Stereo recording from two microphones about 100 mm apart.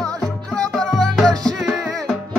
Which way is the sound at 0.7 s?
5° left (ahead or behind).